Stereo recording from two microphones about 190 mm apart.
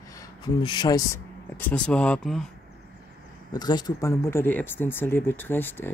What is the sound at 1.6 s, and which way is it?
Speech, 5° left (ahead or behind).